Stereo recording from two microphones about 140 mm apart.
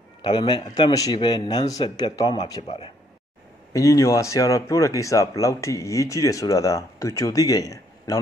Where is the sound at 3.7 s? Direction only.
25° left (ahead or behind).